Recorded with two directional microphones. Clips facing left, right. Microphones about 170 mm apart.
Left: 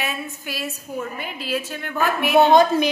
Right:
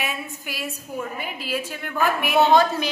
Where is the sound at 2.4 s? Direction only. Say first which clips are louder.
Left 3 dB; 15° left (ahead or behind).